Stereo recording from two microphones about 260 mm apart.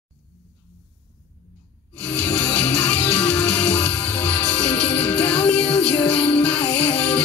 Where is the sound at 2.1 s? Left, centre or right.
Centre.